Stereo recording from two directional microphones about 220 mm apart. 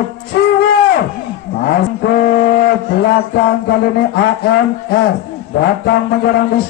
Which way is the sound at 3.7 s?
50° left (ahead or behind).